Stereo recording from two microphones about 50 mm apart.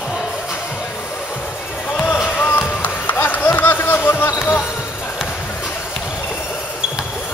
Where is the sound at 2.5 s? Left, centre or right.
Left.